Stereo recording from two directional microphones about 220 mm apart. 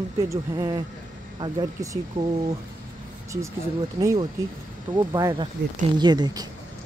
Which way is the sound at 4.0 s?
15° right (ahead or behind).